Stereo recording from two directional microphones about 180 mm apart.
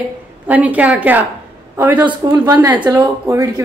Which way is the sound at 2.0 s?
20° right (ahead or behind).